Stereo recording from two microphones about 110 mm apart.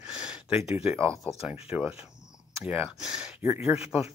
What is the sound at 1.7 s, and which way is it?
Speech, 15° right (ahead or behind).